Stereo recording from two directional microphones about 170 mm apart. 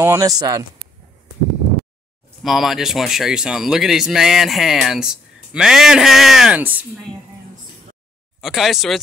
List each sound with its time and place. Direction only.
0.0 s speech: 20° right (ahead or behind)
2.4 s speech: centre (ahead or behind)
8.4 s speech: centre (ahead or behind)